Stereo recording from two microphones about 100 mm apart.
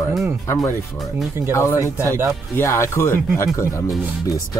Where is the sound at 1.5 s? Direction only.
30° left (ahead or behind).